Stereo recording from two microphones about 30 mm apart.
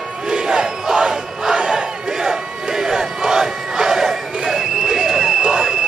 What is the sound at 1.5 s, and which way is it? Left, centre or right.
Battle cry, right.